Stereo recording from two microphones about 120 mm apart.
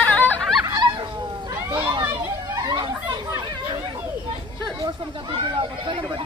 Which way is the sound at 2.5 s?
35° right (ahead or behind).